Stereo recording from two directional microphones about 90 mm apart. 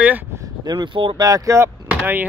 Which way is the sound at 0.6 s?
50° right (ahead or behind).